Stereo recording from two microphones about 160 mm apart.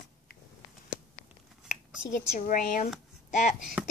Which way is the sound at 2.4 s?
60° left (ahead or behind).